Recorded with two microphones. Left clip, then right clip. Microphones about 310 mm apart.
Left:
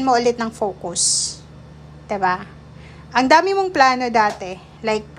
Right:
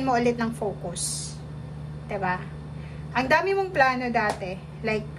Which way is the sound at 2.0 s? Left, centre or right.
Centre.